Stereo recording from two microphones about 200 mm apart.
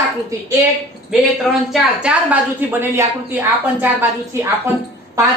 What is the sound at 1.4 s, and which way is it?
A woman's voice, centre (ahead or behind).